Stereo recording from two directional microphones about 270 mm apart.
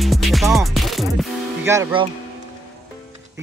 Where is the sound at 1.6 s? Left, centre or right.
Centre.